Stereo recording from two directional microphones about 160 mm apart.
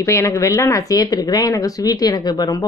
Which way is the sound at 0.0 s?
20° left (ahead or behind).